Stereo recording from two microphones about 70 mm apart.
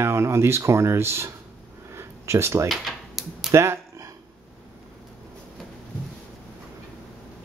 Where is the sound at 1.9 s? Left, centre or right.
Right.